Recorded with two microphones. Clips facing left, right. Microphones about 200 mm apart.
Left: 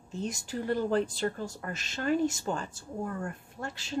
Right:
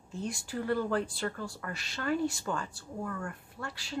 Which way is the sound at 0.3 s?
40° left (ahead or behind).